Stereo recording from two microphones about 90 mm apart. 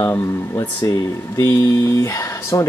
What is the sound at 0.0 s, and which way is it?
Speech, 35° left (ahead or behind).